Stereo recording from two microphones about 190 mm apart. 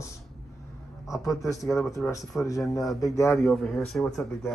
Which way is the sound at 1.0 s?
Centre (ahead or behind).